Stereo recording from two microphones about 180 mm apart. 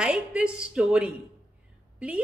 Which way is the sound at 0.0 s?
5° right (ahead or behind).